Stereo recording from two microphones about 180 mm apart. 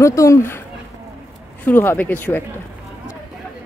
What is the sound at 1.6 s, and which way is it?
Speech, 10° left (ahead or behind).